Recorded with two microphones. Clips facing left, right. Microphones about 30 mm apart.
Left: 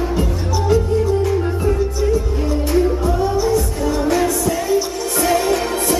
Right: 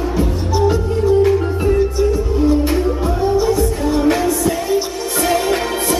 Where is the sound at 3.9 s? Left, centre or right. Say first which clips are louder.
Right 1 dB; right.